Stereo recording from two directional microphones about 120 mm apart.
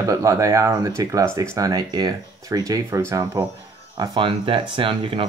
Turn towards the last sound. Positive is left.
turn(degrees=-45)  # may be behind; listen again after turning